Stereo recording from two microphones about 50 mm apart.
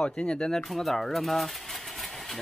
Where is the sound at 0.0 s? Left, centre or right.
Left.